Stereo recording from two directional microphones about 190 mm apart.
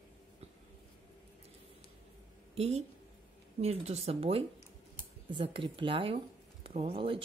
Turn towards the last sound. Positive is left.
turn(degrees=-25)  # may be behind; listen again after turning